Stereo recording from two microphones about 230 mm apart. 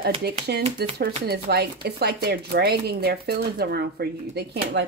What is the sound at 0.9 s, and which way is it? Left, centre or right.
Speech, right.